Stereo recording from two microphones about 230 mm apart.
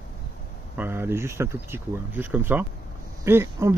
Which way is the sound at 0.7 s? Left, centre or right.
Centre.